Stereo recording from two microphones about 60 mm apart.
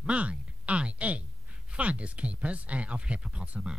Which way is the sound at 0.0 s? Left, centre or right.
Centre.